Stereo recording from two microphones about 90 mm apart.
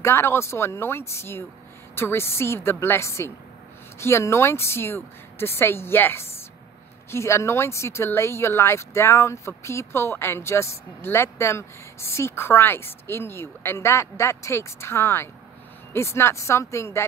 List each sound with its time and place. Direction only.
0.0 s a woman's voice: 30° left (ahead or behind)